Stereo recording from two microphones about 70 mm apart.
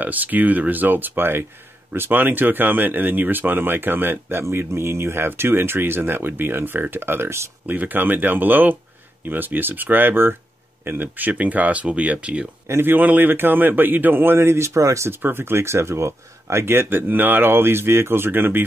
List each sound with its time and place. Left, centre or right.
0.0 s speech: right
7.6 s speech: right
12.6 s speech: right
15.2 s speech: right